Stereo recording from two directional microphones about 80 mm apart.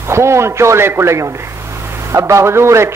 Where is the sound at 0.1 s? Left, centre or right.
Right.